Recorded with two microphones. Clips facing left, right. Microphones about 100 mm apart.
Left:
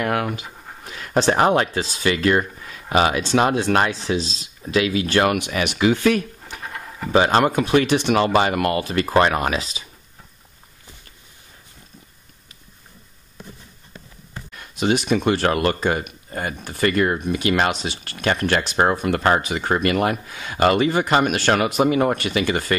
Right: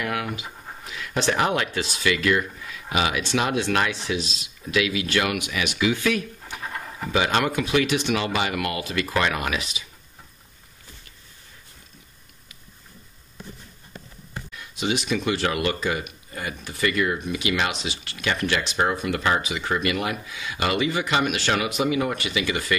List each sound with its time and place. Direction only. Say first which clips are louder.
0.0 s speech: left 5 dB; 45° left (ahead or behind)
6.6 s a sound: left 1 dB; centre (ahead or behind)
7.1 s speech: left 6 dB; 40° left (ahead or behind)
14.5 s speech: left 6 dB; 50° left (ahead or behind)